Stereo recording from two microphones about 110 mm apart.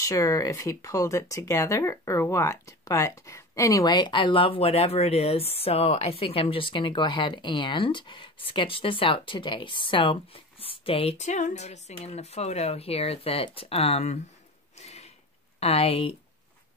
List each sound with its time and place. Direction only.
0.0 s speech: 30° left (ahead or behind); by 14.2 s 80° left
14.8 s a sound: 80° left
15.6 s speech: 65° left (ahead or behind)